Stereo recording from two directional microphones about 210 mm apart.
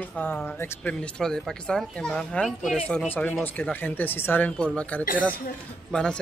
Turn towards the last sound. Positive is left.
turn(degrees=5)  # may be behind; listen again after turning